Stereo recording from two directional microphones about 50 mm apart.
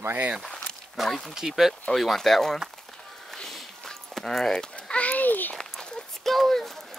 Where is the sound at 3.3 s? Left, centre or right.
Centre.